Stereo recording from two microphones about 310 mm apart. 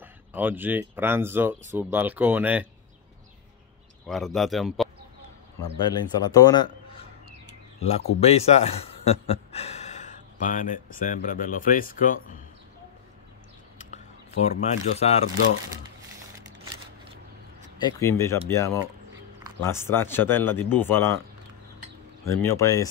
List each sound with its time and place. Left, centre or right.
0.0 s speech: centre
4.1 s speech: centre
5.9 s speech: centre
8.2 s speech: centre
13.7 s keys jangling: left
17.8 s speech: centre
22.2 s speech: centre